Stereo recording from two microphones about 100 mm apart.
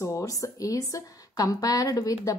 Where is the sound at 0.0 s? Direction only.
30° left (ahead or behind).